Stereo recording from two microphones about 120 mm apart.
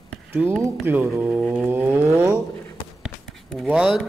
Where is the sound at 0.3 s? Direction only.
20° right (ahead or behind).